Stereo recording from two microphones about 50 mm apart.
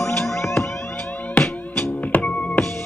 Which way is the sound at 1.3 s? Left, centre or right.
Left.